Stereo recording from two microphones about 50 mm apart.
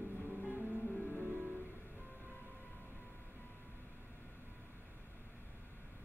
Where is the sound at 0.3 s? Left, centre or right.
Right.